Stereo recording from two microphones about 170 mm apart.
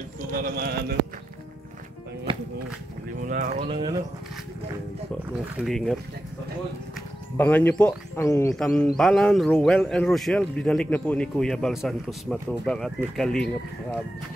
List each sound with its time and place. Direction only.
0.3 s speech: 65° right (ahead or behind)
3.6 s speech: 30° right (ahead or behind)
5.6 s a man's voice: centre (ahead or behind)
7.3 s speech: 10° left (ahead or behind)
8.5 s a man's voice: centre (ahead or behind)